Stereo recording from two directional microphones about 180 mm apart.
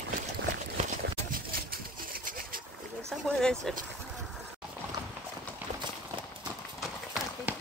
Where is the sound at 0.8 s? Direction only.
50° right (ahead or behind).